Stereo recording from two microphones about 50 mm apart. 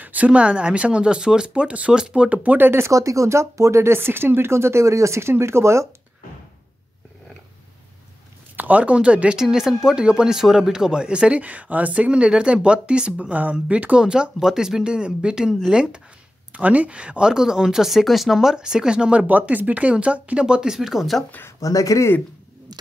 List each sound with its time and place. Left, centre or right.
0.0 s speech: right; by 2.2 s centre
2.2 s speech: right
2.7 s speech: right
5.3 s speech: right
8.5 s speech: right
9.4 s speech: centre
13.3 s speech: right
13.9 s speech: centre
19.2 s speech: right
20.7 s speech: centre
21.5 s speech: left